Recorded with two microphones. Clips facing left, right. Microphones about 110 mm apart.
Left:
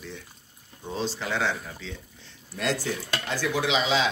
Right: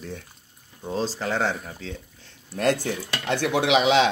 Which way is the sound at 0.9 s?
40° right (ahead or behind).